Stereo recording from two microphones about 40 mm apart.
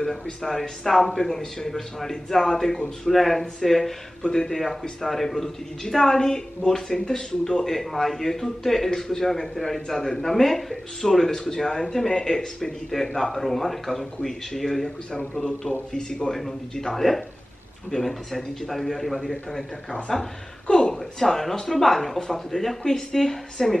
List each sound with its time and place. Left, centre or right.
0.0 s a man's voice: centre
15.9 s a man's voice: centre
20.6 s a sound: centre
20.9 s a man's voice: centre